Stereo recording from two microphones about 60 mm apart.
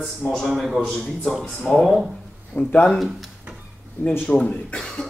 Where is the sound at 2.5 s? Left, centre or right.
Left.